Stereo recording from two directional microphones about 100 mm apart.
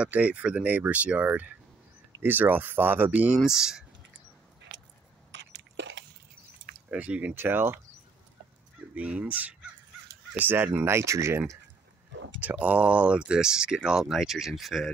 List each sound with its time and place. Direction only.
0.0 s speech: 15° right (ahead or behind)
3.3 s speech: 5° right (ahead or behind)
6.9 s speech: 10° right (ahead or behind)
8.9 s speech: 15° right (ahead or behind); by 11.4 s 30° right (ahead or behind)
12.4 s speech: 15° right (ahead or behind)